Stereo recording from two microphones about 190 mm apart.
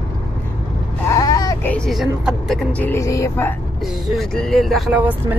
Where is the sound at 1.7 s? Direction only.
Centre (ahead or behind).